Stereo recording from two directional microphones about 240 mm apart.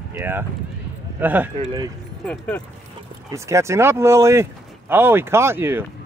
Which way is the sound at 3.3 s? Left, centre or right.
Centre.